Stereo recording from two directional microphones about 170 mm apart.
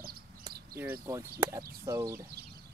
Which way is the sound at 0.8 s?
15° right (ahead or behind).